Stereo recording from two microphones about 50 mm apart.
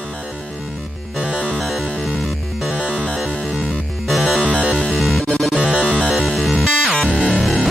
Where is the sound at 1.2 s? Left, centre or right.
Centre.